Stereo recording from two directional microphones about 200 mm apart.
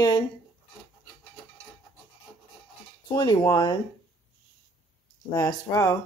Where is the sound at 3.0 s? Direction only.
20° left (ahead or behind).